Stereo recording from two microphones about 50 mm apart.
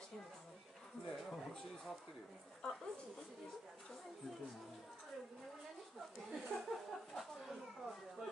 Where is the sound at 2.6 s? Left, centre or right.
Centre.